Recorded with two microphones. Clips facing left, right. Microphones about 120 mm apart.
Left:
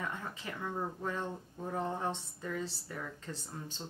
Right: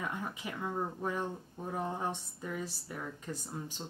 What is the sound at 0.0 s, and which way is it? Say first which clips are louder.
Speech: right 2 dB; 15° right (ahead or behind).